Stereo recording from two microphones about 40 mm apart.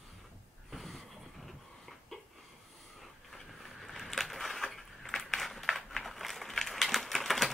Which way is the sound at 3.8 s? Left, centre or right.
Centre.